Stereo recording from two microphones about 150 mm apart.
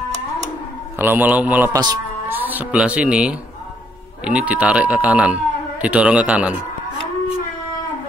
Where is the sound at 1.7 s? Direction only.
25° right (ahead or behind).